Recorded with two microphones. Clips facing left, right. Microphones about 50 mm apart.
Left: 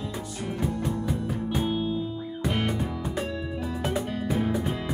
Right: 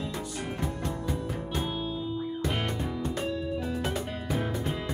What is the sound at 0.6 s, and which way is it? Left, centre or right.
Music, centre.